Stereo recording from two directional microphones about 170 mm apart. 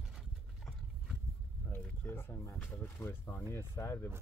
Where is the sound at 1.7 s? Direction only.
15° left (ahead or behind).